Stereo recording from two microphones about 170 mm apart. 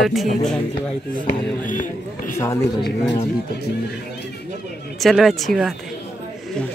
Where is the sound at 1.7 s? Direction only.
50° left (ahead or behind).